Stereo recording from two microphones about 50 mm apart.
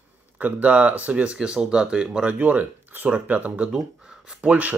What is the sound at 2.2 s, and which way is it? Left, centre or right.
Speech, right.